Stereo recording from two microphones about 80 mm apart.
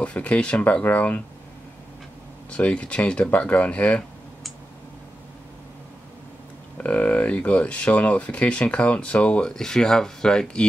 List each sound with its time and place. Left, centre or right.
0.0 s speech: centre
2.5 s speech: centre
6.8 s speech: centre